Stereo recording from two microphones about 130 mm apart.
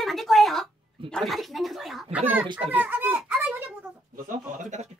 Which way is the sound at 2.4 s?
35° right (ahead or behind).